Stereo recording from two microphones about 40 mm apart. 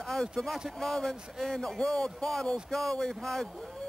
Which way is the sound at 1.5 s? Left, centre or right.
Centre.